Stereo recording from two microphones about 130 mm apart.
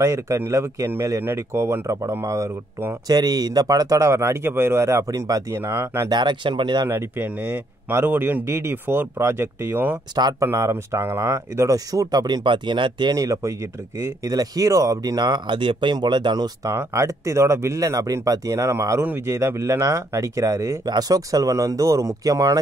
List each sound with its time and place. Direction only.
0.0 s speech: 25° right (ahead or behind)
6.1 s speech: 35° right (ahead or behind)
6.9 s speech: 20° right (ahead or behind); by 16.7 s 35° right (ahead or behind)
16.7 s speech: 20° right (ahead or behind)